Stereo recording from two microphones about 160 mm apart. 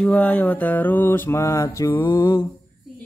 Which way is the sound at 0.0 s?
10° left (ahead or behind).